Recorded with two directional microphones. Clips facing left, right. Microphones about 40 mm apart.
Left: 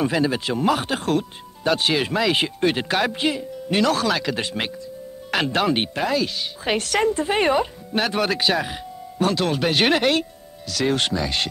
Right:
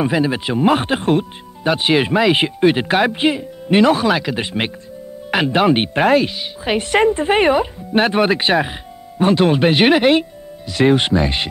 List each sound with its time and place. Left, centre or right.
0.0 s speech: centre
5.9 s speech: right
6.2 s speech: centre
6.9 s speech: right